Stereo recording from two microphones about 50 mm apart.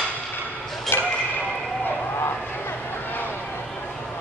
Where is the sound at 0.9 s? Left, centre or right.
Left.